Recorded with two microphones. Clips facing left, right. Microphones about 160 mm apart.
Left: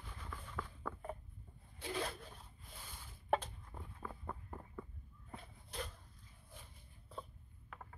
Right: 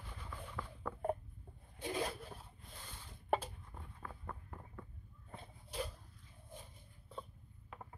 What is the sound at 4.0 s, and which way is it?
Vehicle, 10° left (ahead or behind).